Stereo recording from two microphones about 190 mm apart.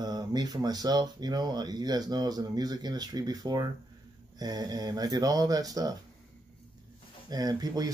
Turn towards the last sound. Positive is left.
turn(degrees=-20)  # may be behind; listen again after turning